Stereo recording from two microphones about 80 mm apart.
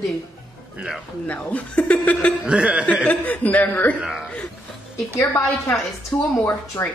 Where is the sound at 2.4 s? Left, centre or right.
Centre.